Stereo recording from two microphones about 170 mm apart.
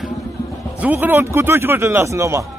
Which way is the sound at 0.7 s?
10° right (ahead or behind).